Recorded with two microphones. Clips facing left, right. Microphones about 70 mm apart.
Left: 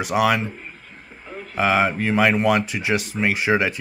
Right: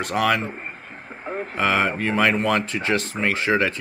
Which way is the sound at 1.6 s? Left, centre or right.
Centre.